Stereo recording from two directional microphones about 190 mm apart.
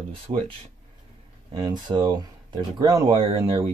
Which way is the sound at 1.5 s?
25° right (ahead or behind).